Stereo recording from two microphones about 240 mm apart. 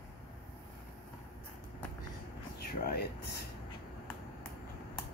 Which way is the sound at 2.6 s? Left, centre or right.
Left.